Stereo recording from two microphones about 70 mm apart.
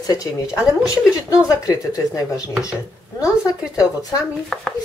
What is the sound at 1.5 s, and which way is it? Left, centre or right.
Speech, left.